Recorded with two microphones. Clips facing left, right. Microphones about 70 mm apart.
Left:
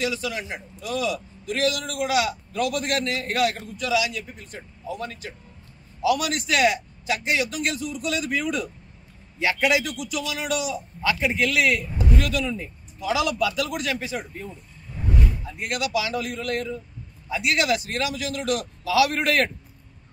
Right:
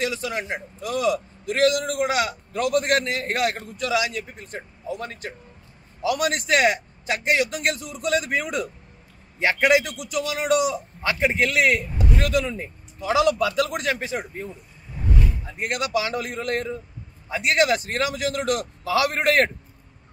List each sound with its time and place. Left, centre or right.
0.0 s a man's voice: right